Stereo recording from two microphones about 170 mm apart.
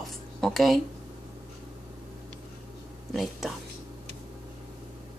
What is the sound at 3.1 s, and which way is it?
Speech, centre (ahead or behind).